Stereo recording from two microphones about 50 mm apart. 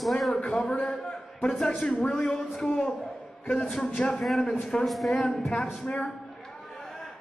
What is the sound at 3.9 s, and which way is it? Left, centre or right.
Speech, centre.